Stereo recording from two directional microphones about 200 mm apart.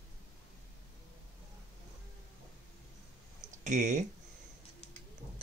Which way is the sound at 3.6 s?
40° right (ahead or behind).